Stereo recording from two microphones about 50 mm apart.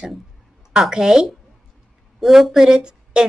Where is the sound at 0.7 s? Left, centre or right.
Centre.